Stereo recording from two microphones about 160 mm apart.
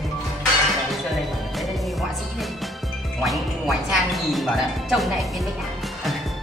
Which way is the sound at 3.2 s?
Centre (ahead or behind).